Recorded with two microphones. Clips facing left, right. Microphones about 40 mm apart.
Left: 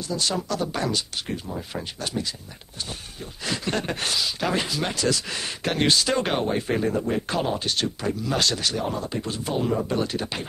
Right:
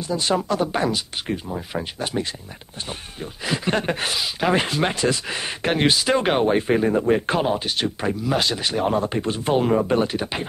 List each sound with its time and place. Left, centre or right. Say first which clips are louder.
0.0 s speech: right 5 dB; right
3.4 s speech: right 4 dB; right
4.6 s speech: right 5 dB; right
8.8 s speech: right 7 dB; right
10.1 s speech: right 3 dB; centre